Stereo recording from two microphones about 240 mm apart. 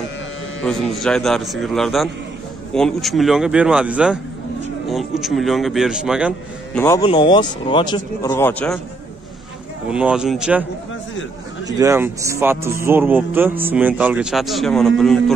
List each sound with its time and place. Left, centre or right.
0.6 s a man's voice: centre
6.8 s speech: centre
9.8 s a man's voice: centre
11.6 s speech: centre